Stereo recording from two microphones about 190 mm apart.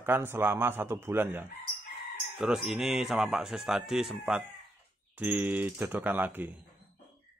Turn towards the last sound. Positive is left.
turn(degrees=-10)  # may be behind; listen again after turning